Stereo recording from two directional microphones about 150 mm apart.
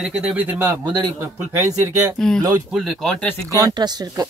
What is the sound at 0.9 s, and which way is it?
Speech, 25° right (ahead or behind).